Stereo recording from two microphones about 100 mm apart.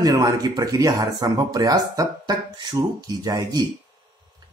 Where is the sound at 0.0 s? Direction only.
40° right (ahead or behind).